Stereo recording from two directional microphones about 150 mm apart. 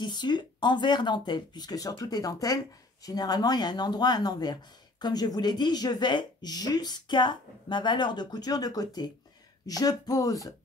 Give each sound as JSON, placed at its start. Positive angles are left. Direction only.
{"t": 0.0, "sound": "speech", "side_deg": 30}